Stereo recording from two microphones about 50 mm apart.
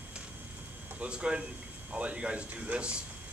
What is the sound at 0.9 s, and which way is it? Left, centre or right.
Speech, right.